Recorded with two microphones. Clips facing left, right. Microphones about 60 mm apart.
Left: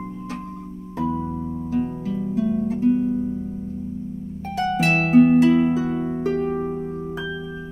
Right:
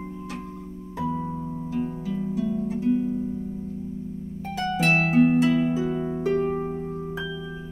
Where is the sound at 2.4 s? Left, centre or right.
Left.